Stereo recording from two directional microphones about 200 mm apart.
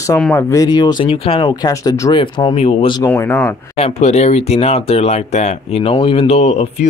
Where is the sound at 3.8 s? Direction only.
30° left (ahead or behind).